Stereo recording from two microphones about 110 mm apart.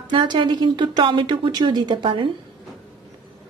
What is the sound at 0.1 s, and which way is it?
Speech, 45° right (ahead or behind).